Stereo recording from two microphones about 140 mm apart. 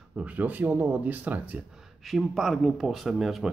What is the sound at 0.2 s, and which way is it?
Speech, 10° right (ahead or behind).